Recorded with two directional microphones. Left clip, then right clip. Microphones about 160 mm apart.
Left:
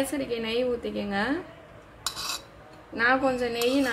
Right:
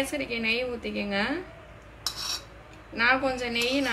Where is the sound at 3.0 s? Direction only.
30° left (ahead or behind).